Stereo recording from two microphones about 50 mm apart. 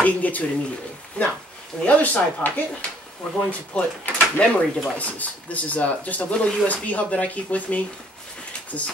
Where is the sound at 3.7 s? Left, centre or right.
Left.